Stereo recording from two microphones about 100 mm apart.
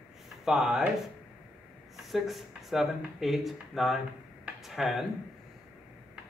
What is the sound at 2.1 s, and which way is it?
Speech, centre (ahead or behind).